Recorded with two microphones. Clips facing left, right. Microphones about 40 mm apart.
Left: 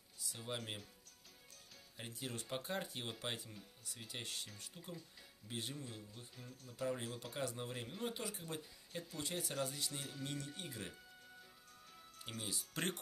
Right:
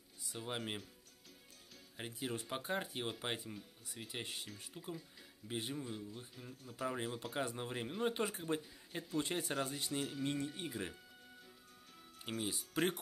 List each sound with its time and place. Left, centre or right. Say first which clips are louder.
0.2 s speech: right 3 dB; centre
2.0 s speech: right 5 dB; centre
8.1 s speech: right 7 dB; right
9.7 s speech: right 6 dB; centre
12.2 s speech: right 5 dB; centre